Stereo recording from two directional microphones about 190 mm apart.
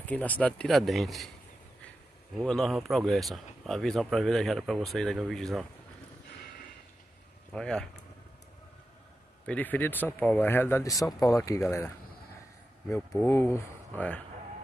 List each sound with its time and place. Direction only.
0.0 s speech: 10° left (ahead or behind)
2.3 s speech: centre (ahead or behind)
7.5 s speech: 5° left (ahead or behind)
9.5 s speech: 10° left (ahead or behind)
13.2 s speech: 15° left (ahead or behind)